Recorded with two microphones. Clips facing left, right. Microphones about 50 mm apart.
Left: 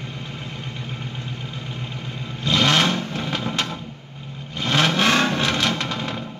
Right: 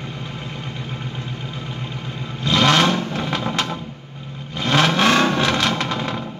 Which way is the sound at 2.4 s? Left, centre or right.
Right.